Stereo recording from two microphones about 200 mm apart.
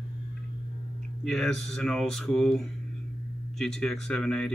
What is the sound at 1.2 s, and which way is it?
Speech, centre (ahead or behind).